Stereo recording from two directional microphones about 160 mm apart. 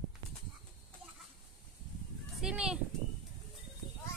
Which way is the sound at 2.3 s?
5° right (ahead or behind).